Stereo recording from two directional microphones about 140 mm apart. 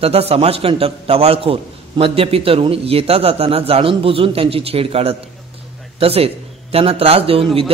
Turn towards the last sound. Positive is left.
turn(degrees=-45)  # may be behind; listen again after turning